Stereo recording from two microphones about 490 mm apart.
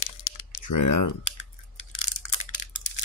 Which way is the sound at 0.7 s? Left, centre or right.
Left.